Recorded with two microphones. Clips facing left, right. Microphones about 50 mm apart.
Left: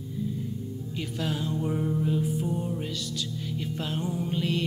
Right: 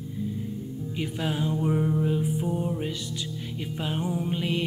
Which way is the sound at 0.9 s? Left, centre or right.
Centre.